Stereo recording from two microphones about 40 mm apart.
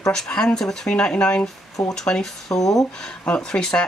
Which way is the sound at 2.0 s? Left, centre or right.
Centre.